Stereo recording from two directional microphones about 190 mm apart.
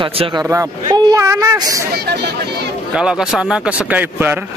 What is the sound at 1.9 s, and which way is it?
Speech, 60° right (ahead or behind).